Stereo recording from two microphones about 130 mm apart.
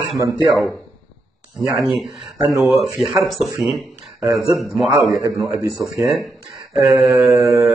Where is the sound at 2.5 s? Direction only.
Centre (ahead or behind).